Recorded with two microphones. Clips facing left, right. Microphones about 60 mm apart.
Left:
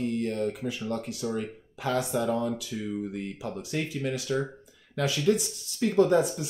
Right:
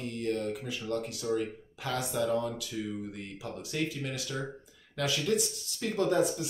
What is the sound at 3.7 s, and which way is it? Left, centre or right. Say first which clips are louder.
Speech: left 3 dB; left.